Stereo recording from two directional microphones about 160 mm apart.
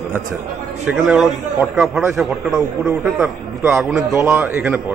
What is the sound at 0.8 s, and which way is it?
A man's voice, centre (ahead or behind).